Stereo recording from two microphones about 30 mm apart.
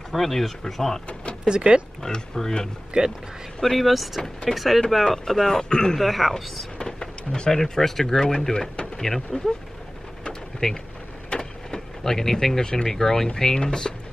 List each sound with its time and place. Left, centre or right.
0.1 s speech: centre
1.5 s speech: right
2.0 s speech: centre
2.9 s speech: right
3.6 s speech: centre; by 5.9 s left
5.9 s speech: centre
6.8 s speech: left
9.0 s speech: centre
10.6 s speech: left
11.2 s vehicle: left
12.0 s speech: centre
13.6 s speech: left